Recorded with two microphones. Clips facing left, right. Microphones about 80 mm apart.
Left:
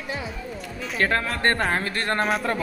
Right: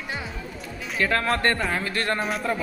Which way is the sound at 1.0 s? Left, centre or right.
Left.